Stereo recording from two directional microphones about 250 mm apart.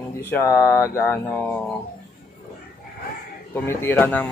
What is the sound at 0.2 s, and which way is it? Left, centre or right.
Speech, centre.